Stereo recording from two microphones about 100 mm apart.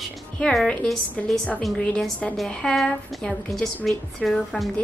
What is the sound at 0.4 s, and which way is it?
A woman's voice, 10° left (ahead or behind).